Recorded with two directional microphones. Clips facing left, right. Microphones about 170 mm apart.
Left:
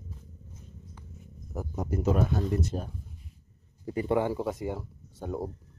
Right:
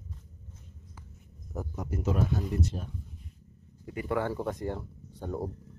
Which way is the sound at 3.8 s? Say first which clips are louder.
Left 5 dB; 30° left (ahead or behind).